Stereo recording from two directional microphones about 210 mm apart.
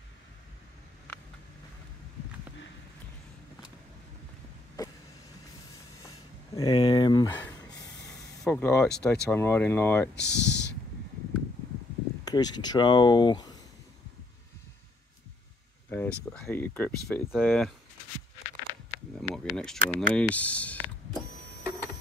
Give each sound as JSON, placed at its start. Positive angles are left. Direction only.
{"t": 4.8, "sound": "vehicle", "side_deg": 20}
{"t": 6.0, "sound": "a sound", "side_deg": 15}
{"t": 8.5, "sound": "speech", "side_deg": 10}
{"t": 10.1, "sound": "speech", "side_deg": 55}
{"t": 12.3, "sound": "speech", "side_deg": 20}
{"t": 15.9, "sound": "a sound", "side_deg": 5}
{"t": 16.3, "sound": "speech", "side_deg": 10}
{"t": 19.1, "sound": "speech", "side_deg": 0}